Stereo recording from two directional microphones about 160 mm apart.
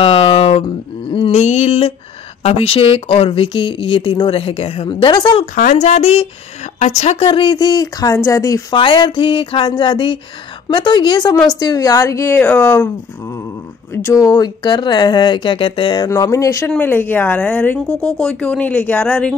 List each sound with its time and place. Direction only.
0.0 s a sound: 35° left (ahead or behind)
2.4 s speech: 35° left (ahead or behind)
5.5 s speech: 50° left (ahead or behind); by 19.3 s 5° left (ahead or behind)